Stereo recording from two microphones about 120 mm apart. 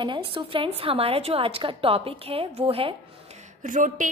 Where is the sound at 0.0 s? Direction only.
45° right (ahead or behind).